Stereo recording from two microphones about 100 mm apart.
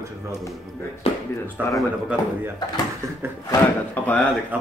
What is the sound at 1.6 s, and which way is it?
Speech, 15° right (ahead or behind).